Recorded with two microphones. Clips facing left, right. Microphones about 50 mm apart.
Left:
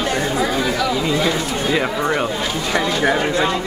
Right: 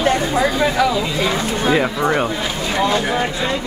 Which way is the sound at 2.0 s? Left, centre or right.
Centre.